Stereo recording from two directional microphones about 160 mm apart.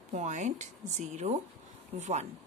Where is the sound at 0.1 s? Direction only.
50° right (ahead or behind).